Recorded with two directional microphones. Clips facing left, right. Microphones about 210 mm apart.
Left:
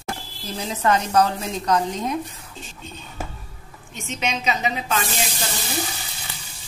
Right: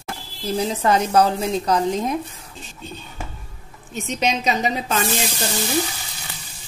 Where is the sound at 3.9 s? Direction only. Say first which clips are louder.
Right 5 dB; 35° right (ahead or behind).